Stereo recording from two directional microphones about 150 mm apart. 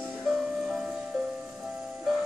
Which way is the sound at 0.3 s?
Centre (ahead or behind).